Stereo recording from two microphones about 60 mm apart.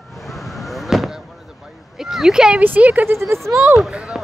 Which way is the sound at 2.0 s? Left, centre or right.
Centre.